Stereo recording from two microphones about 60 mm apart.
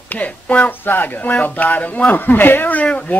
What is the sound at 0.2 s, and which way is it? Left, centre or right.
Speech, left.